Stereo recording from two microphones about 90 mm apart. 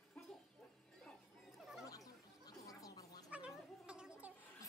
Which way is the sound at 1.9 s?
40° left (ahead or behind).